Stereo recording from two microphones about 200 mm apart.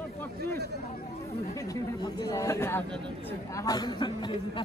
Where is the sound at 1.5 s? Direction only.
15° left (ahead or behind).